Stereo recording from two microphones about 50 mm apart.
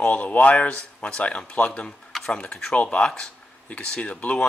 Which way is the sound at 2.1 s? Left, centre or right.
Centre.